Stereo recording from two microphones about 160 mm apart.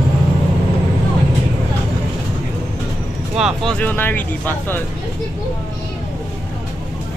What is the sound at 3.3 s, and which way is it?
Speech, centre (ahead or behind).